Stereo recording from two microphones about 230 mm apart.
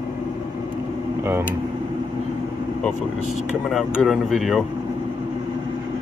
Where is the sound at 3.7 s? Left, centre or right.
Centre.